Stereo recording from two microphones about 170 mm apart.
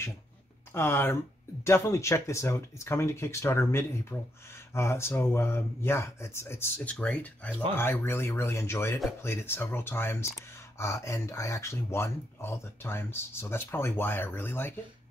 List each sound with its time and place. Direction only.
0.7 s speech: 15° left (ahead or behind)